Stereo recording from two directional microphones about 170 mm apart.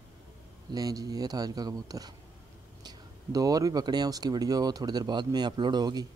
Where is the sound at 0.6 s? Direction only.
20° right (ahead or behind).